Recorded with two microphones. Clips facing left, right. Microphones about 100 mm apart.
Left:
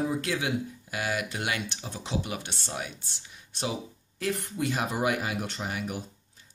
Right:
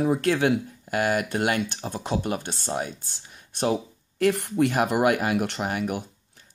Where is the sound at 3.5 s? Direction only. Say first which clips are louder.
Right 8 dB; 55° right (ahead or behind).